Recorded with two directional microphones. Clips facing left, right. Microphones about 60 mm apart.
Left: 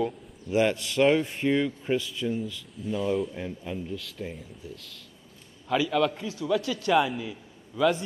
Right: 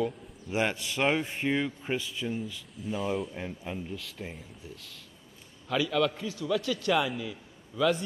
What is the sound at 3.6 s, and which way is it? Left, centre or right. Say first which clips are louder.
Speech: left 3 dB; right.